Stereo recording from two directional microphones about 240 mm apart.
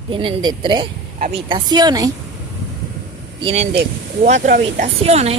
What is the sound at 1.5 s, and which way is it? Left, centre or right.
Speech, centre.